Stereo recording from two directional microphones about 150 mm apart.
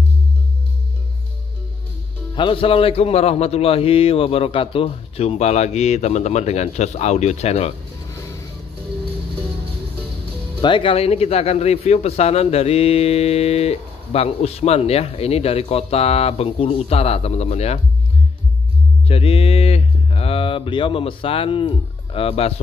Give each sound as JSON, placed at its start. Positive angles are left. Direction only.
{"t": 2.3, "sound": "speech", "side_deg": 35}
{"t": 10.6, "sound": "speech", "side_deg": 35}
{"t": 19.0, "sound": "speech", "side_deg": 40}